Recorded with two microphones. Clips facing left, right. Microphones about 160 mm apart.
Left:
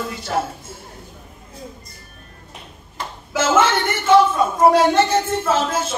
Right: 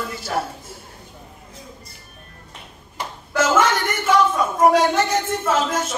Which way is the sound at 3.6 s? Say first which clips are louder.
Left 2 dB; 25° left (ahead or behind).